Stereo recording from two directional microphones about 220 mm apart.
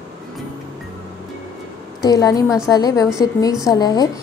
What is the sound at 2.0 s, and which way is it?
A woman's voice, 15° left (ahead or behind).